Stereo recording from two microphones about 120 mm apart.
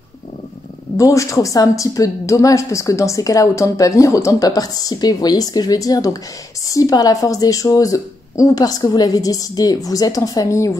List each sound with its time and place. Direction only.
0.9 s a woman's voice: 25° left (ahead or behind)